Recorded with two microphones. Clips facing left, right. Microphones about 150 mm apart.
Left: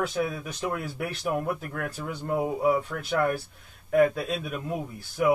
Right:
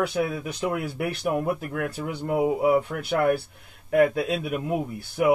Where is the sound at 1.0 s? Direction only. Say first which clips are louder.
Right 3 dB; 10° right (ahead or behind).